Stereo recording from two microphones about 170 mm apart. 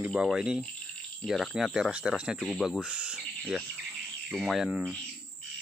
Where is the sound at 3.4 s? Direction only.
5° left (ahead or behind).